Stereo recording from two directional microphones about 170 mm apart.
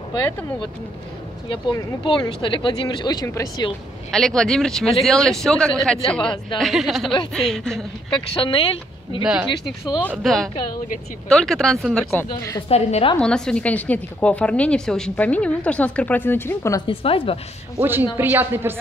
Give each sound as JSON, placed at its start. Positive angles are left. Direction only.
{"t": 1.5, "sound": "speech", "side_deg": 30}
{"t": 4.1, "sound": "speech", "side_deg": 5}
{"t": 8.4, "sound": "a woman's voice", "side_deg": 30}
{"t": 9.2, "sound": "speech", "side_deg": -5}
{"t": 12.4, "sound": "a woman's voice", "side_deg": 20}
{"t": 12.6, "sound": "a woman's voice", "side_deg": 35}
{"t": 13.2, "sound": "a woman's voice", "side_deg": 5}
{"t": 16.8, "sound": "a woman's voice", "side_deg": 35}
{"t": 17.7, "sound": "speech", "side_deg": -15}